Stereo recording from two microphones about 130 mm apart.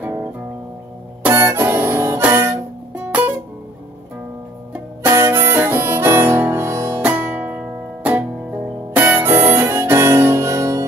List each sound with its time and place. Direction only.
0.0 s music: 20° right (ahead or behind)
1.3 s music: 15° right (ahead or behind)
5.0 s harmonica: 20° right (ahead or behind)
7.0 s music: 15° right (ahead or behind)
9.2 s harmonica: 20° right (ahead or behind)